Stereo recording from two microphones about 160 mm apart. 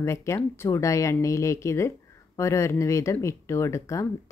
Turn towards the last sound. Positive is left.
turn(degrees=20)  # may be behind; listen again after turning